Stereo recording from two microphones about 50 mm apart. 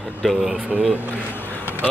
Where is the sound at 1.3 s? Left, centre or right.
Left.